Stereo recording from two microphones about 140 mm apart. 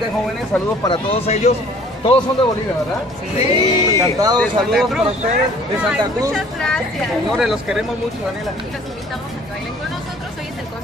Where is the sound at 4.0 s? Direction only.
30° right (ahead or behind).